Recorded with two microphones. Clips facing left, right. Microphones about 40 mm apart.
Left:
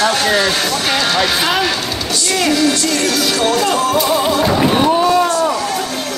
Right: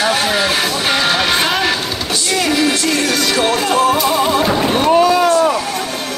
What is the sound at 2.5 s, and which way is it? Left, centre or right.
Music, right.